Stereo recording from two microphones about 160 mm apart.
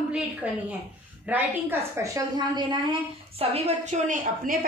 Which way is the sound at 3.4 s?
40° right (ahead or behind).